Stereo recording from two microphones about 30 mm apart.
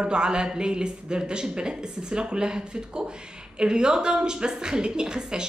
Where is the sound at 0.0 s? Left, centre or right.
Right.